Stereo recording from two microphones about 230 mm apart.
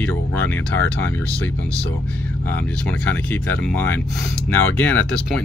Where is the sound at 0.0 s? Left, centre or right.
Centre.